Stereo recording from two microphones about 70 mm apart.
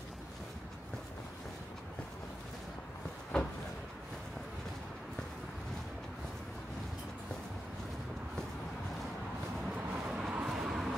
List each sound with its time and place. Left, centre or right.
3.3 s cupboard open or close: centre
9.6 s vehicle: centre
10.0 s vehicle: centre